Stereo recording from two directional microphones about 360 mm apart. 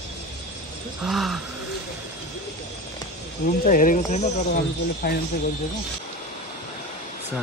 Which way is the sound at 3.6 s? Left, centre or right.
Left.